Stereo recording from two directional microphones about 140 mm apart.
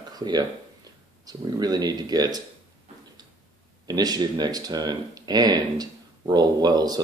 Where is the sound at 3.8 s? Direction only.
30° right (ahead or behind).